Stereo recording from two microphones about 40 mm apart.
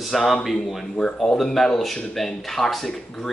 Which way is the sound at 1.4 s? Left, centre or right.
Centre.